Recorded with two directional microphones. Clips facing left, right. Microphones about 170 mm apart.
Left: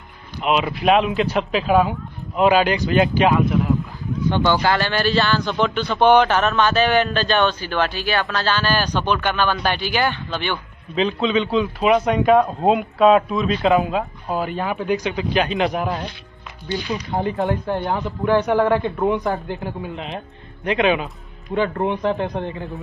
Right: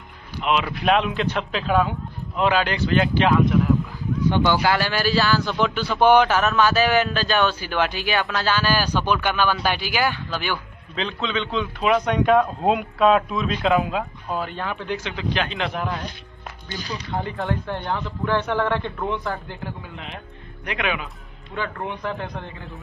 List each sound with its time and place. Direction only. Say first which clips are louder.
0.8 s a man's voice: left 4 dB; 5° left (ahead or behind)
4.2 s a man's voice: left 1 dB; 10° right (ahead or behind)
11.0 s a man's voice: left 7 dB; 10° left (ahead or behind)
14.3 s a man's voice: left 5 dB; 10° left (ahead or behind)
16.6 s speech: left 9 dB; 45° right (ahead or behind)
17.1 s a man's voice: left 5 dB; 20° left (ahead or behind)